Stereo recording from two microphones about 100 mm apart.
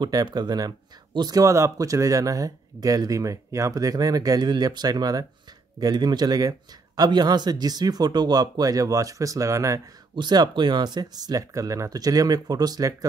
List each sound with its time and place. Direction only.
0.0 s speech: 45° right (ahead or behind)
10.1 s speech: 45° right (ahead or behind)